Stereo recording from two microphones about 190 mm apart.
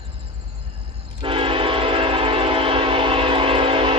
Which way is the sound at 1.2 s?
25° right (ahead or behind).